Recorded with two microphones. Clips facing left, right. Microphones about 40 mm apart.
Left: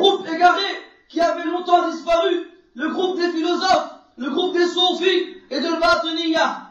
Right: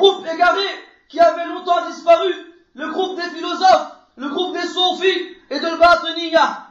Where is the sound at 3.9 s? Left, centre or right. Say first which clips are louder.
Even; right.